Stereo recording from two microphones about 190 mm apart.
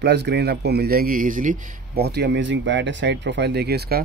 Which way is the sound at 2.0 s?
60° right (ahead or behind).